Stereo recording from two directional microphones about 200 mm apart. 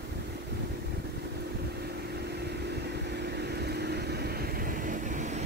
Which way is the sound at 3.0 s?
55° right (ahead or behind).